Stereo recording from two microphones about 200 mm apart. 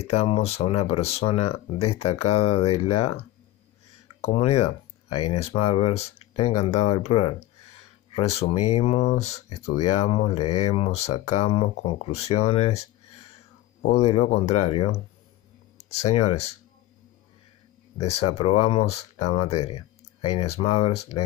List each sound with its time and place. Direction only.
0.0 s speech: 30° left (ahead or behind)
4.2 s speech: 35° left (ahead or behind)
8.4 s speech: 30° left (ahead or behind)
13.9 s speech: 35° left (ahead or behind)
15.9 s speech: 30° left (ahead or behind)
18.0 s speech: 30° left (ahead or behind)